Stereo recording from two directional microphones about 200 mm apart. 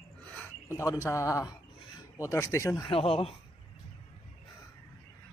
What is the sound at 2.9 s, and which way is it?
Speech, 30° left (ahead or behind).